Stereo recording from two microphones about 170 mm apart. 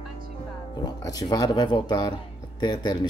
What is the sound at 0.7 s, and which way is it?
Speech, 25° left (ahead or behind).